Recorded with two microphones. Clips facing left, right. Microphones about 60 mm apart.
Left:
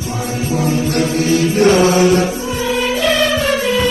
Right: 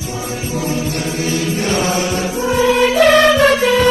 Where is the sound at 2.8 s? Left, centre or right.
Right.